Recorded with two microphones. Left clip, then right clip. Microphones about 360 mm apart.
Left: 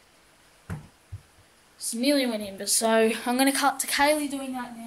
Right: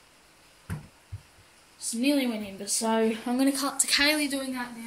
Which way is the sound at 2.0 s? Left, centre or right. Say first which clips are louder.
Left 2 dB; left.